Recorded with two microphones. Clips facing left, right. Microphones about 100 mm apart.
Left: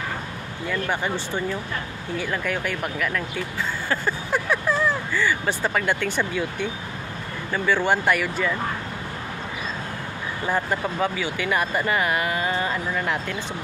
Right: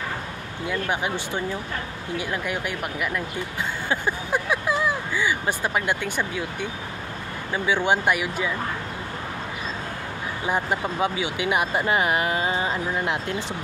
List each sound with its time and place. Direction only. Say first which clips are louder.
0.7 s speech: even; 10° right (ahead or behind)
10.4 s speech: left 1 dB; 15° right (ahead or behind)